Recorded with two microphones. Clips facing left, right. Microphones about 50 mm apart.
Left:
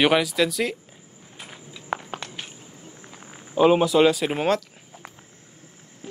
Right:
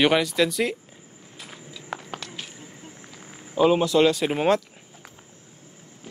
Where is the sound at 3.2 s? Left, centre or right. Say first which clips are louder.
Left 2 dB; centre.